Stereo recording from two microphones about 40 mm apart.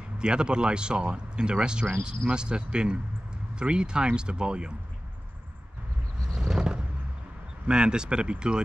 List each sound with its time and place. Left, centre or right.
0.2 s speech: right
6.3 s vehicle: centre
7.6 s speech: right